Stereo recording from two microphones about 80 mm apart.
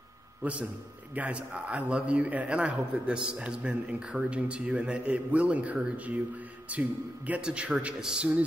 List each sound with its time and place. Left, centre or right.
0.4 s a man's voice: centre